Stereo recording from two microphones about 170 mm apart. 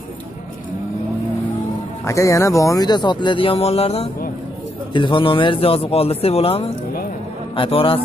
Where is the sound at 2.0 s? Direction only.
20° left (ahead or behind).